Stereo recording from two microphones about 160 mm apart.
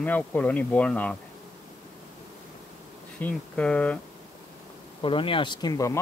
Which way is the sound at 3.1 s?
10° left (ahead or behind).